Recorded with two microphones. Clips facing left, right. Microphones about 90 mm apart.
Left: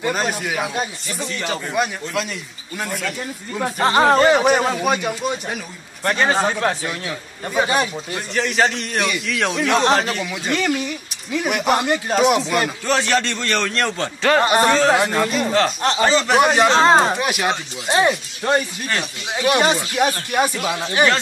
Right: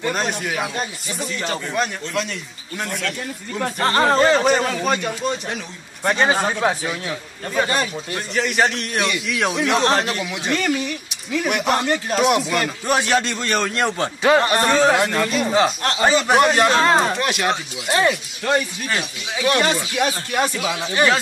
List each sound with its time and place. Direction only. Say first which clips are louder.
0.0 s speech: left 1 dB; centre (ahead or behind)
7.4 s speech: left 2 dB; 15° left (ahead or behind)
8.1 s speech: even; centre (ahead or behind)
12.8 s a man's voice: even; 15° right (ahead or behind)
14.4 s speech: left 1 dB; 15° left (ahead or behind)
16.0 s a man's voice: right 1 dB; 15° right (ahead or behind)
16.3 s speech: left 1 dB; 5° left (ahead or behind)
16.7 s speech: left 3 dB; 25° left (ahead or behind)
17.2 s speech: even; 5° left (ahead or behind)
17.8 s speech: left 1 dB; 20° left (ahead or behind); by 21.2 s centre (ahead or behind)